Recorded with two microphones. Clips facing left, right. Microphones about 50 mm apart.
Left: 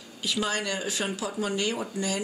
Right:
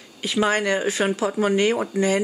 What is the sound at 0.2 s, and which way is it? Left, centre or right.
Speech, right.